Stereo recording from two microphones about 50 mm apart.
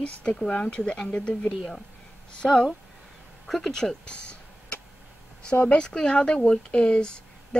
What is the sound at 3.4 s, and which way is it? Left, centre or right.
Speech, centre.